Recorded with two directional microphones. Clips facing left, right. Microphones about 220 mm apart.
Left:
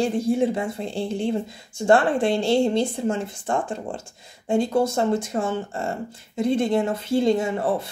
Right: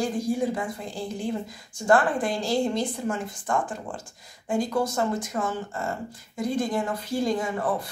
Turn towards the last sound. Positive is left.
turn(degrees=25)  # may be behind; listen again after turning